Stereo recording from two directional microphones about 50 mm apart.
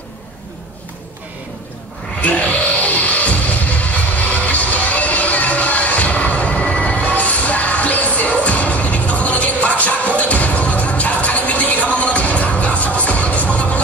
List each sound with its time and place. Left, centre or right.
2.2 s music: left